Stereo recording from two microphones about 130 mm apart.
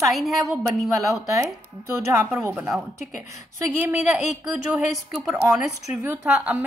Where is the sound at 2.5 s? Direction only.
5° right (ahead or behind).